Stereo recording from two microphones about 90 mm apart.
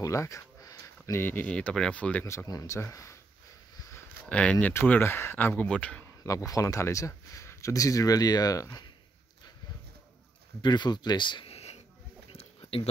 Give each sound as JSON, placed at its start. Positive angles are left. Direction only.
{"t": 0.0, "sound": "a sound", "side_deg": 35}
{"t": 1.2, "sound": "speech", "side_deg": 20}
{"t": 1.5, "sound": "speech", "side_deg": 10}
{"t": 2.2, "sound": "speech", "side_deg": 40}
{"t": 3.7, "sound": "a sound", "side_deg": 40}
{"t": 4.3, "sound": "speech", "side_deg": 15}
{"t": 6.2, "sound": "speech", "side_deg": 40}
{"t": 10.6, "sound": "speech", "side_deg": 55}
{"t": 12.3, "sound": "a sound", "side_deg": 90}